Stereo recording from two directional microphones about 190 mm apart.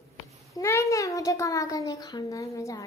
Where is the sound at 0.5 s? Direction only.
15° left (ahead or behind).